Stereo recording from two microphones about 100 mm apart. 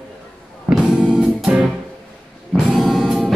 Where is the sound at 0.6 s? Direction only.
10° right (ahead or behind).